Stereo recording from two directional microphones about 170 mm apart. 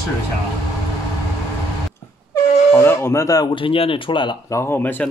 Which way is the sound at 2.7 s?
15° left (ahead or behind).